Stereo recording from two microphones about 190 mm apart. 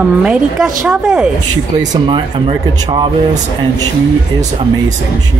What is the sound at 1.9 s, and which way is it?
Speech, 25° right (ahead or behind).